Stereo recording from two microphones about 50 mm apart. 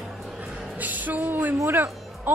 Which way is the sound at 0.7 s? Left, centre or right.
Right.